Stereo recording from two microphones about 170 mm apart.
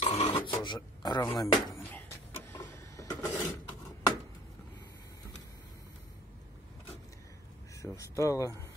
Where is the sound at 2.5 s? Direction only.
15° left (ahead or behind).